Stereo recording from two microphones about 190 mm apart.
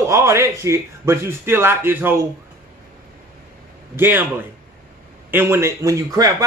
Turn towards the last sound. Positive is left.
turn(degrees=-15)  # may be behind; listen again after turning